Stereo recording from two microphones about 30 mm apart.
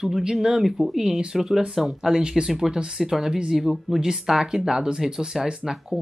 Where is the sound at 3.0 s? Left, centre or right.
Centre.